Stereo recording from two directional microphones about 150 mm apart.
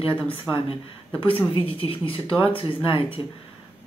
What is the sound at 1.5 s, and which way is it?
Speech, 35° left (ahead or behind).